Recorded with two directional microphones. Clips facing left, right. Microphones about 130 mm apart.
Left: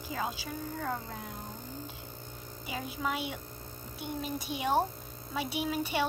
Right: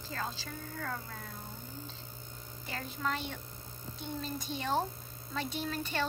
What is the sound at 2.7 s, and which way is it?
A woman's voice, 10° left (ahead or behind).